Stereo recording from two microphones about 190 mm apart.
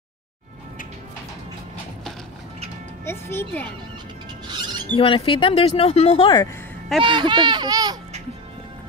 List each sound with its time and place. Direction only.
3.1 s speech: 10° left (ahead or behind)
4.5 s music: 25° right (ahead or behind)
4.9 s speech: 25° left (ahead or behind)
7.0 s a child's voice: 25° right (ahead or behind)